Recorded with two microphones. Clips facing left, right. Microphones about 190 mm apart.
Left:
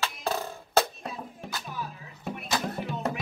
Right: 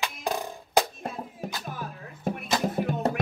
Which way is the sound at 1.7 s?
50° right (ahead or behind).